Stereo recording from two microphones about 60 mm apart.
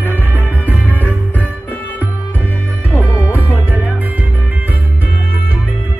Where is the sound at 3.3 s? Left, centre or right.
Right.